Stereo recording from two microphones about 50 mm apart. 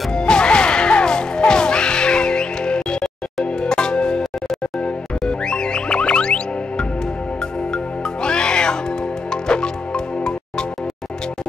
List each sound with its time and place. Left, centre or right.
0.1 s music: centre
5.2 s music: centre